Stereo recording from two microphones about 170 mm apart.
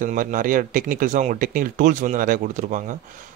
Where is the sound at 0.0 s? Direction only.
50° right (ahead or behind).